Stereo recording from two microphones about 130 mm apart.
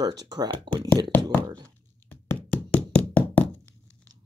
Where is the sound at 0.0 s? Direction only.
30° right (ahead or behind).